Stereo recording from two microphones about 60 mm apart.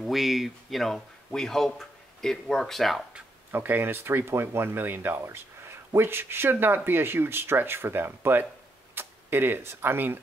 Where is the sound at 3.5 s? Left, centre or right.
Right.